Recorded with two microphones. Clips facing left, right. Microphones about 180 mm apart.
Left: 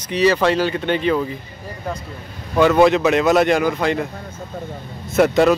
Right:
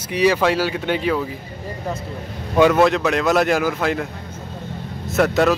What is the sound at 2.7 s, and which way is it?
Speech, centre (ahead or behind).